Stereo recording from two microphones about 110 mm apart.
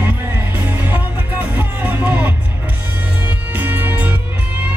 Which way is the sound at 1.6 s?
15° right (ahead or behind).